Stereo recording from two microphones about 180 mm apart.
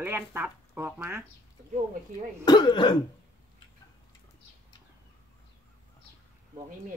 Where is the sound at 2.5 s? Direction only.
25° left (ahead or behind).